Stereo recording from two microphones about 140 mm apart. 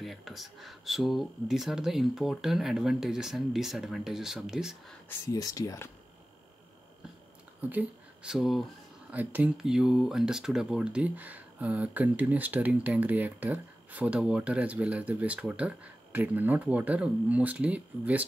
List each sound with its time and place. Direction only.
0.0 s speech: centre (ahead or behind)
5.2 s speech: 25° left (ahead or behind)
7.7 s speech: 10° right (ahead or behind)
9.1 s speech: 10° right (ahead or behind)